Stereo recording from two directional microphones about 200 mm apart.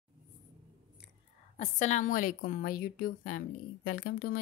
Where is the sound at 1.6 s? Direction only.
35° left (ahead or behind).